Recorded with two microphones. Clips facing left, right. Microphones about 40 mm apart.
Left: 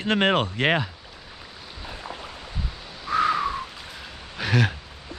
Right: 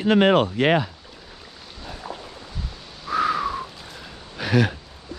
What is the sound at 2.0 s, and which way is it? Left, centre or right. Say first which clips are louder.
Boat: right 3 dB; left.